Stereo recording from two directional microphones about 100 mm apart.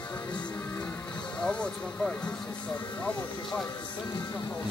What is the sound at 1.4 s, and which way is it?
Speech, 10° left (ahead or behind).